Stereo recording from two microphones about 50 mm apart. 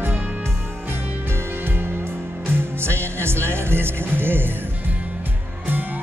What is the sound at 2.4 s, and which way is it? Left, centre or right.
Music, right.